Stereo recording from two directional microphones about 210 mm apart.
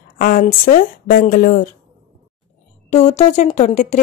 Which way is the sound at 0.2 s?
40° left (ahead or behind).